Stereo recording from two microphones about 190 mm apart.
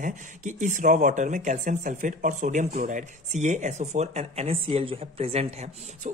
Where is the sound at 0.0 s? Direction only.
40° right (ahead or behind).